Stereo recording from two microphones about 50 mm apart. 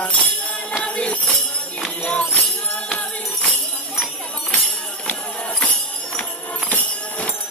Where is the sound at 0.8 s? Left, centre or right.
Left.